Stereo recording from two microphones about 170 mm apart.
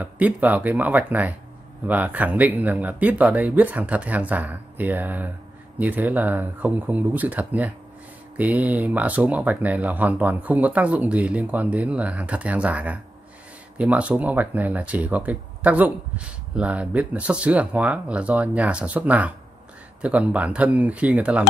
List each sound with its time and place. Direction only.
0.0 s speech: 10° right (ahead or behind)